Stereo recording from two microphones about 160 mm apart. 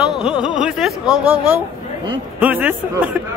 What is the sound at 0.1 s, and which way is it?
Speech, 5° right (ahead or behind).